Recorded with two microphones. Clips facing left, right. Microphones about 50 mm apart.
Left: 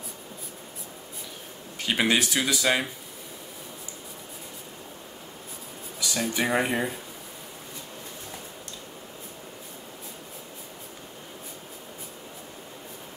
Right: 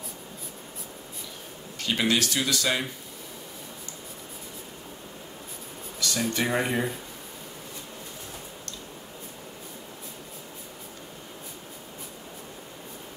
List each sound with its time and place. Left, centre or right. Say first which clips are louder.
1.8 s speech: left 1 dB; centre
5.9 s speech: even; centre